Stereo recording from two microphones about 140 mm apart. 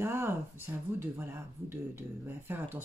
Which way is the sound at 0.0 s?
20° right (ahead or behind).